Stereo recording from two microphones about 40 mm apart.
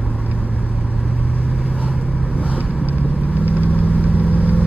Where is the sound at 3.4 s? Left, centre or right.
Right.